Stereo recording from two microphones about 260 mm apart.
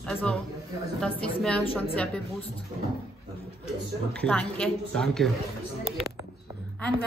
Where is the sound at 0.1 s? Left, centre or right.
Centre.